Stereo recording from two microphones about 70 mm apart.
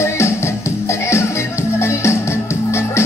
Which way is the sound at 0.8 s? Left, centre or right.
Left.